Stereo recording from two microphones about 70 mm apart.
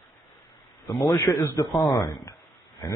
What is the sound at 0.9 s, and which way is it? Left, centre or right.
A man's voice, left.